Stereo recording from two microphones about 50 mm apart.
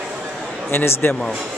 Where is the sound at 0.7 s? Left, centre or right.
Left.